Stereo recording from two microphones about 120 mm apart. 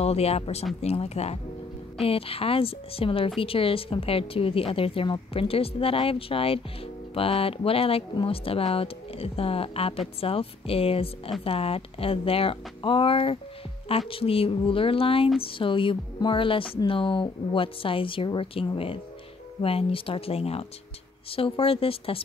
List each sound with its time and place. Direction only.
0.0 s speech: 60° left (ahead or behind)